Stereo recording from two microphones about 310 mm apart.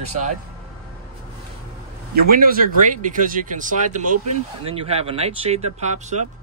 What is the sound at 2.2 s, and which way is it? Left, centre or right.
Speech, right.